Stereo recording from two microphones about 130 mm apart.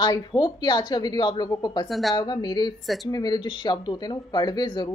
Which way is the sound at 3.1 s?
30° left (ahead or behind).